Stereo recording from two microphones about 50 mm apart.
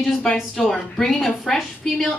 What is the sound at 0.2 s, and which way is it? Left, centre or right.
A woman's voice, centre.